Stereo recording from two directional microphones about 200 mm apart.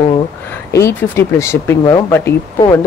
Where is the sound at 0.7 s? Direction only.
10° left (ahead or behind).